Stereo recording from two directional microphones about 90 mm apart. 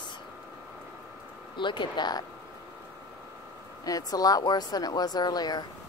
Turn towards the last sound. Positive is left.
turn(degrees=50)  # may be behind; listen again after turning